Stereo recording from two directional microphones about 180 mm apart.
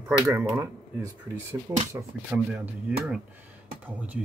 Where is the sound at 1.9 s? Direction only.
10° right (ahead or behind).